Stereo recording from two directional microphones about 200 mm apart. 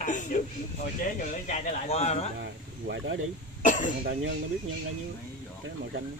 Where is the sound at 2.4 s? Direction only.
60° right (ahead or behind).